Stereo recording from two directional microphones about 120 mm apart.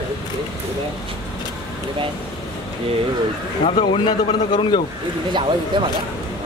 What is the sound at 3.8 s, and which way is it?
A man's voice, 40° left (ahead or behind).